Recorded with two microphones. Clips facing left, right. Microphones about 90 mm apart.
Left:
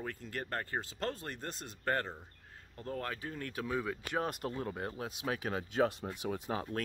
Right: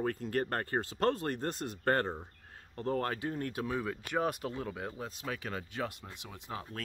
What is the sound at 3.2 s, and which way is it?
Speech, 35° right (ahead or behind).